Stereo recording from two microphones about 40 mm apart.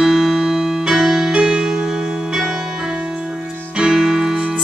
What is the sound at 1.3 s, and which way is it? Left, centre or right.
Music, right.